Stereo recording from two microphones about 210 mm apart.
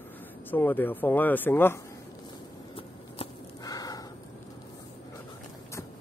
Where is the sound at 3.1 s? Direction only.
15° left (ahead or behind).